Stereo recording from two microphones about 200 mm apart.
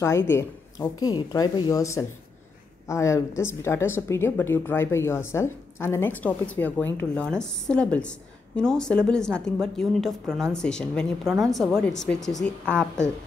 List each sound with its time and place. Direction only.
0.0 s a woman's voice: 10° left (ahead or behind)